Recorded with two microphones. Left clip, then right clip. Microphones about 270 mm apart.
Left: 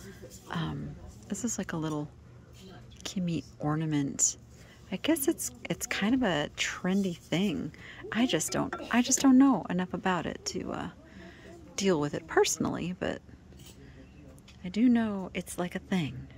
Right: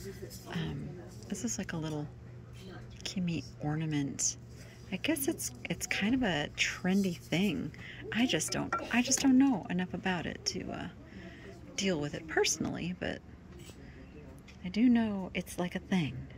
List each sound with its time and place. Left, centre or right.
0.5 s a woman's voice: centre
14.6 s a woman's voice: centre